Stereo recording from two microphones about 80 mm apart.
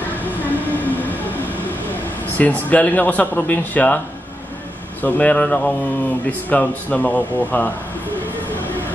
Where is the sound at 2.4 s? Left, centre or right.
Centre.